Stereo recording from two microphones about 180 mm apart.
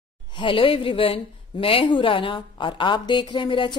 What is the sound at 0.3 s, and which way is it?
A woman's voice, 30° left (ahead or behind).